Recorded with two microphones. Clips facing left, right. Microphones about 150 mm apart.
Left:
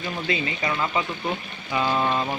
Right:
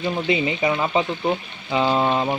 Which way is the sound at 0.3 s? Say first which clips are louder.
Right 5 dB; 20° right (ahead or behind).